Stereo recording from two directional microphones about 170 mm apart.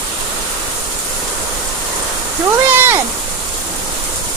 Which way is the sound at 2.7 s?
15° right (ahead or behind).